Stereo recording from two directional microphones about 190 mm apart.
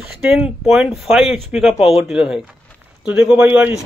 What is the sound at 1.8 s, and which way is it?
Speech, 30° left (ahead or behind).